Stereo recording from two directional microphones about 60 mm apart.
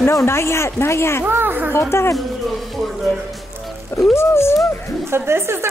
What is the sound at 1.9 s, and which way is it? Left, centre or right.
Speech, left.